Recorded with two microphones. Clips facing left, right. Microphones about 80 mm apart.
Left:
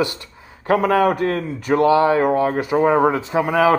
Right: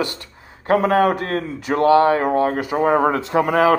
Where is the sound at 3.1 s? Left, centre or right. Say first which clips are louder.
Even; right.